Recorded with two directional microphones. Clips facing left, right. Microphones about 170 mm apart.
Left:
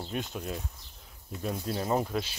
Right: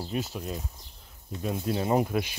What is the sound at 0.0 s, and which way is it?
Speech, centre (ahead or behind).